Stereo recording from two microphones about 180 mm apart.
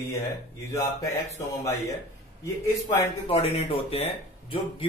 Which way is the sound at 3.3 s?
35° left (ahead or behind).